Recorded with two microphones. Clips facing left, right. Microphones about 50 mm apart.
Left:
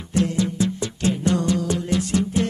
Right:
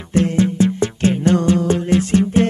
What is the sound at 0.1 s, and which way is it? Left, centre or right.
Music, right.